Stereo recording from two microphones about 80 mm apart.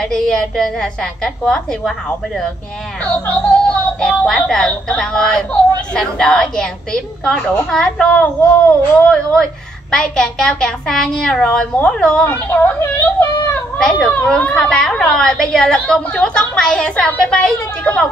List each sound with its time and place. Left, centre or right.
0.0 s speech: centre
3.0 s speech: centre
12.3 s speech: left
12.7 s a sound: left
13.7 s speech: centre